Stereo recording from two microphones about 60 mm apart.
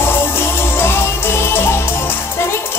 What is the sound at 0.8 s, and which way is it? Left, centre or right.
Music, left.